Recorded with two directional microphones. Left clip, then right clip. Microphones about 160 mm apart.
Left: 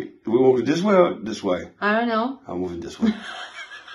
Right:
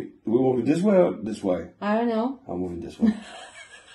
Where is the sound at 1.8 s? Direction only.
30° left (ahead or behind).